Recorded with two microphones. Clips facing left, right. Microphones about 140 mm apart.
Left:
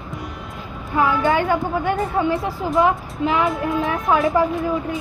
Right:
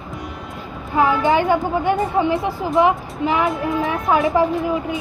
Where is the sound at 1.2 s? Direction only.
20° right (ahead or behind).